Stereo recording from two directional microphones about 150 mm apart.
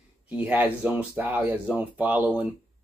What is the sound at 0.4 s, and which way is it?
Speech, 10° right (ahead or behind).